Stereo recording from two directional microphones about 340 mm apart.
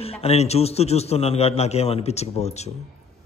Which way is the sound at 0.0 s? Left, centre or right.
Centre.